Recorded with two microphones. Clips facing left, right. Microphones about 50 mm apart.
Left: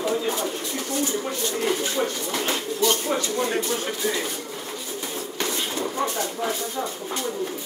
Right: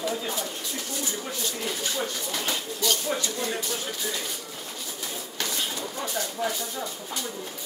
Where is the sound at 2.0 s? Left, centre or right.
Left.